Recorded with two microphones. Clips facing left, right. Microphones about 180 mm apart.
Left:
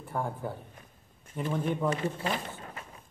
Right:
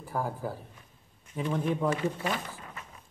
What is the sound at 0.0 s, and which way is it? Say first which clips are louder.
Speech: right 1 dB; 5° right (ahead or behind).